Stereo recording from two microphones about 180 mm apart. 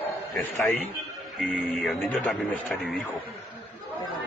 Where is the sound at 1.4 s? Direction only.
Centre (ahead or behind).